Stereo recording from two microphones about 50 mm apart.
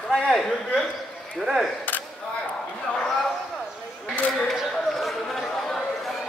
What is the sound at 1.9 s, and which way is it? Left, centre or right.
Single-lens reflex camera, left.